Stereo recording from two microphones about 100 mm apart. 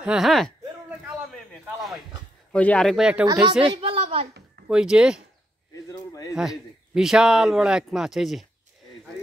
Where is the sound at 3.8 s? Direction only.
85° right.